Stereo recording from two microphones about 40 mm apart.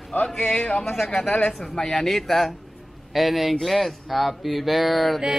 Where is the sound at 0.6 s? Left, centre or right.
Left.